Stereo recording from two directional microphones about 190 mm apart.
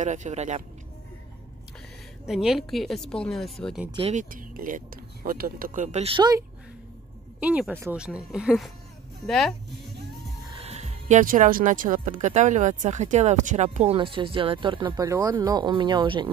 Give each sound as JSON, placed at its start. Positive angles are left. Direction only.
{"t": 0.0, "sound": "speech", "side_deg": -40}
{"t": 2.2, "sound": "speech", "side_deg": 0}
{"t": 4.1, "sound": "speech", "side_deg": -45}
{"t": 7.3, "sound": "speech", "side_deg": -5}
{"t": 10.6, "sound": "speech", "side_deg": -35}